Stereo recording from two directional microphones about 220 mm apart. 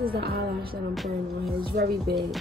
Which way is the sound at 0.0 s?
45° right (ahead or behind).